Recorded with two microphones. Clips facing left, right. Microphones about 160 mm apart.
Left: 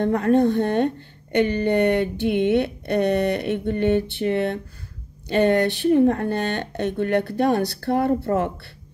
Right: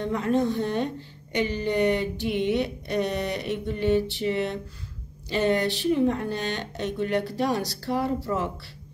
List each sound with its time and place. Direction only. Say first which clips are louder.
0.0 s a woman's voice: left 6 dB; 55° left (ahead or behind)